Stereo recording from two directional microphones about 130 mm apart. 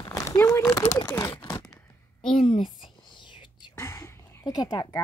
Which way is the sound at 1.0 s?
15° left (ahead or behind).